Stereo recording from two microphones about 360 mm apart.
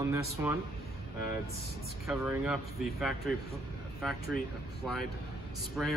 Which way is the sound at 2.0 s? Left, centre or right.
Centre.